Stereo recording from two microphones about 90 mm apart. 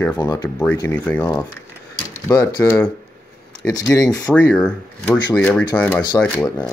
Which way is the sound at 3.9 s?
40° left (ahead or behind).